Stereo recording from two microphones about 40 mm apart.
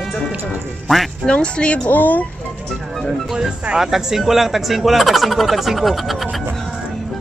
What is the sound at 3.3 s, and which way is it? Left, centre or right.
Speech, centre.